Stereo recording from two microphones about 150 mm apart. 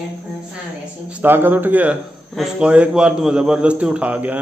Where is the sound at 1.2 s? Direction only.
15° right (ahead or behind).